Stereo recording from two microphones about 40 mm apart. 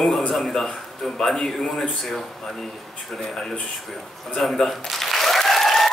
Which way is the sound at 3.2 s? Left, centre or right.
Centre.